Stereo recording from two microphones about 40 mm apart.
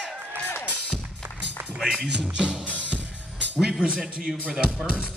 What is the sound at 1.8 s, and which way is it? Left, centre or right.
Speech, centre.